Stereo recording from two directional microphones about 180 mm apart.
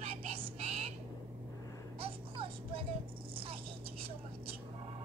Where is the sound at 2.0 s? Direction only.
30° right (ahead or behind).